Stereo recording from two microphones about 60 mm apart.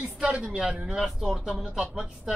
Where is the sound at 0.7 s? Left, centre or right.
Centre.